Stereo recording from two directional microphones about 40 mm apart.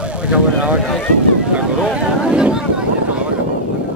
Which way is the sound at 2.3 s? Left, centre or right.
Right.